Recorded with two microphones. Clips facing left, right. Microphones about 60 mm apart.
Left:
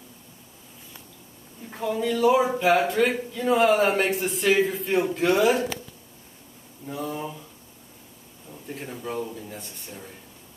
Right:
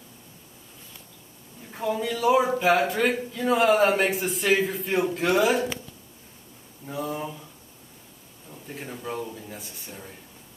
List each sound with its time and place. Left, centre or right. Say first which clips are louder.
1.8 s a man's voice: left 3 dB; centre
6.9 s a man's voice: even; centre
8.5 s a man's voice: left 1 dB; centre